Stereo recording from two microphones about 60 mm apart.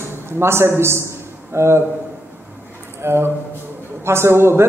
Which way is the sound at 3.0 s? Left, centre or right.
Right.